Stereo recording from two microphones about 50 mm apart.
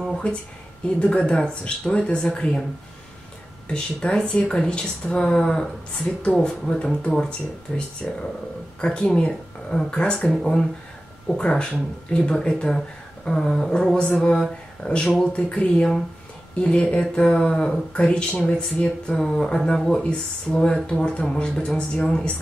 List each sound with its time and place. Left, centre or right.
0.2 s speech: left
2.1 s speech: centre
3.6 s speech: centre
7.2 s speech: left
10.1 s speech: centre
11.3 s speech: left